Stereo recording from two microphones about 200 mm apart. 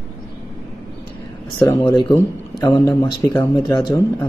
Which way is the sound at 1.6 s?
25° left (ahead or behind).